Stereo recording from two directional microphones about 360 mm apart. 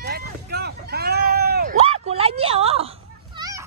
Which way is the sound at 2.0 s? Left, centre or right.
Centre.